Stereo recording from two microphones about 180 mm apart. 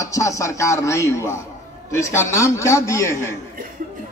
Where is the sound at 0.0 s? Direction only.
15° left (ahead or behind).